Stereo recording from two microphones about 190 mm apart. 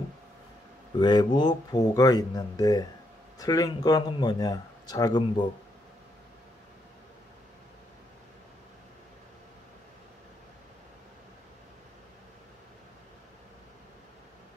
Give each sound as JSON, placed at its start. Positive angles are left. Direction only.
{"t": 0.9, "sound": "speech", "side_deg": 25}